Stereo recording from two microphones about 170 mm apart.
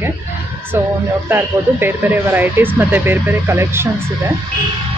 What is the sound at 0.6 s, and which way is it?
Speech, 10° right (ahead or behind).